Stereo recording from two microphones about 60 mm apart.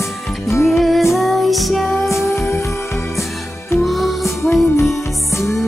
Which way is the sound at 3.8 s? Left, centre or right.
Centre.